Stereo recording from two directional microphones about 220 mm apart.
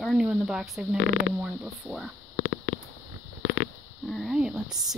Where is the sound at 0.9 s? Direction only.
50° left (ahead or behind).